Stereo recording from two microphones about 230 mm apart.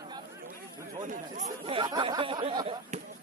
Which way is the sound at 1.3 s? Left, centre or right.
Right.